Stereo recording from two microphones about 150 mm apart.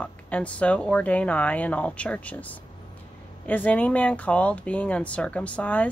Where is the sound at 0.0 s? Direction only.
10° left (ahead or behind).